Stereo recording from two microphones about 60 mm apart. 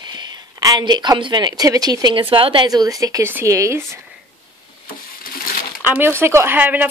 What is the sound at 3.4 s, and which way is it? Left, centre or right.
Speech, right.